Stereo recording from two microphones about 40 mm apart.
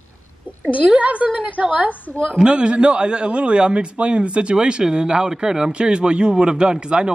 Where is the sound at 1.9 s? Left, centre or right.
Left.